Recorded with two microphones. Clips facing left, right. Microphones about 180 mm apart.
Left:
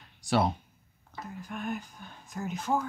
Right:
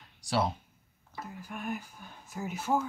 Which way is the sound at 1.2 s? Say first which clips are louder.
Left 2 dB; 5° right (ahead or behind).